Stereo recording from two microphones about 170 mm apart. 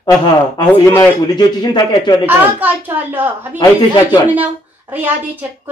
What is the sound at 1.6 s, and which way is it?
Speech, 25° left (ahead or behind).